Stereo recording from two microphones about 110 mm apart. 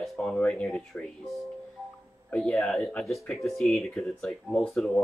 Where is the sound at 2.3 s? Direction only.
5° left (ahead or behind).